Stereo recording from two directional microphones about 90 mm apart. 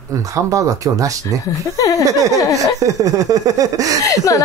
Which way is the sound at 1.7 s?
40° left (ahead or behind).